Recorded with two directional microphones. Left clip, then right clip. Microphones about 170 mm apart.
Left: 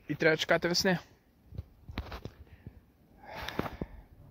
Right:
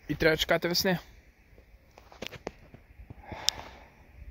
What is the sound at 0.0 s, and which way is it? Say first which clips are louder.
Speech: right 2 dB; 25° right (ahead or behind).